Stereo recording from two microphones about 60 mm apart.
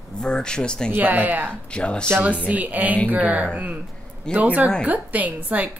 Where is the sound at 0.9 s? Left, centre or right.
Right.